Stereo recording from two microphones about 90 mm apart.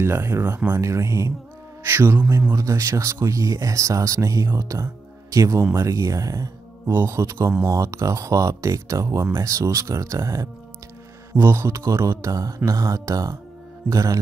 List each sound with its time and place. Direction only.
0.0 s speech: 30° right (ahead or behind)
0.7 s a man's voice: 35° right (ahead or behind)